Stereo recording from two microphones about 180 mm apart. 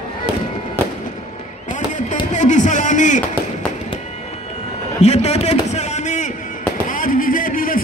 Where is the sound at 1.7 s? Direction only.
45° left (ahead or behind).